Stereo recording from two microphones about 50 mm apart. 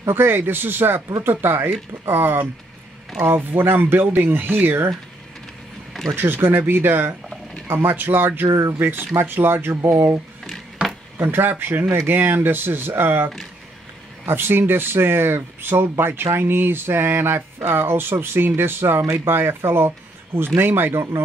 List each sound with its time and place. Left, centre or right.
0.0 s speech: right
6.1 s speech: right
8.5 s speech: right
9.1 s speech: right
10.8 s a sound: centre
11.1 s speech: right